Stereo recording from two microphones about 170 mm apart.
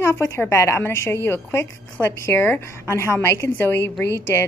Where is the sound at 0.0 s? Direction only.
15° left (ahead or behind).